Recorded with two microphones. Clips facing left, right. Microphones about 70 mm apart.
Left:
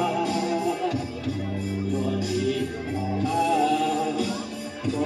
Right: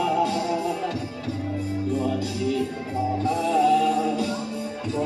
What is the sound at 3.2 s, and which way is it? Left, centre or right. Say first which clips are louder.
Music: right 1 dB; right.